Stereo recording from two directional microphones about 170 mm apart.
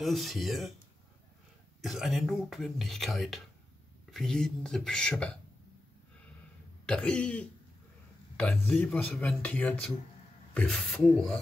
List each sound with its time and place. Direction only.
0.0 s speech: centre (ahead or behind)
1.8 s speech: centre (ahead or behind)
6.9 s speech: 5° left (ahead or behind)